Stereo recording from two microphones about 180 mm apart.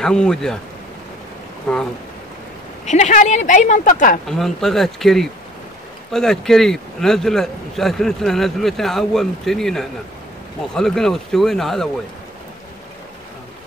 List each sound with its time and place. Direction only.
0.0 s speech: 5° left (ahead or behind)
1.7 s speech: 5° left (ahead or behind)
2.8 s speech: 40° left (ahead or behind)
4.3 s speech: centre (ahead or behind)